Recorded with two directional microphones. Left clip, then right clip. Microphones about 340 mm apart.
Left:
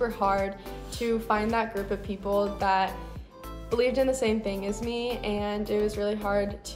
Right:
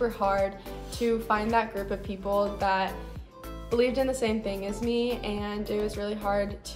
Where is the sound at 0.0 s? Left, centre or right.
Centre.